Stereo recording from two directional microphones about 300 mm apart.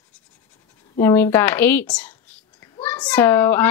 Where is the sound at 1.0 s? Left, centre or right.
Centre.